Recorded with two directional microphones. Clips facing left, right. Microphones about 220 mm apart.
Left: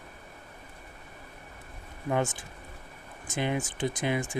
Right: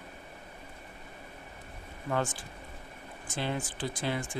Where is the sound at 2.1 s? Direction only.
20° left (ahead or behind).